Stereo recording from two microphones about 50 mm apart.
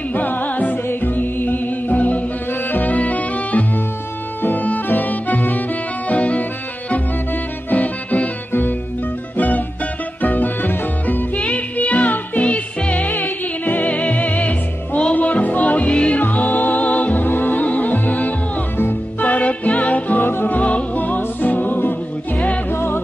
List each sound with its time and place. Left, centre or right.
0.1 s music: left
7.7 s music: left
10.2 s music: left
11.3 s music: left
16.2 s music: left
20.2 s music: left
20.5 s music: left
22.7 s music: left